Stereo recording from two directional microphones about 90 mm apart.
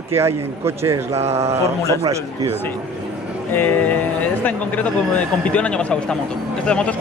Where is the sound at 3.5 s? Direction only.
20° left (ahead or behind).